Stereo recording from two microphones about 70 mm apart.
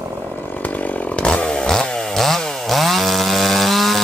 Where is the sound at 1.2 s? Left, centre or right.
Centre.